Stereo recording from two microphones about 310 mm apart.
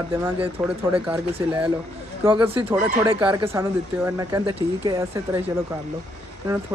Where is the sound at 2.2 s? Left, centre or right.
Centre.